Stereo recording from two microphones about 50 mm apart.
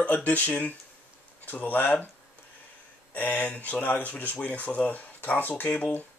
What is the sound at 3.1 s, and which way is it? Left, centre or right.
Speech, left.